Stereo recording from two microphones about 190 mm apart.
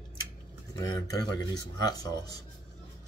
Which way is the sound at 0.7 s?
20° left (ahead or behind).